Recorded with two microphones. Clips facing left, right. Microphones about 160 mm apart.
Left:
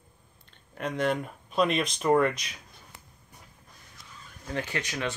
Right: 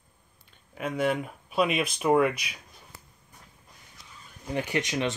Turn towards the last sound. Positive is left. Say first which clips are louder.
# right 4 dB
turn(degrees=-20)  # may be behind; listen again after turning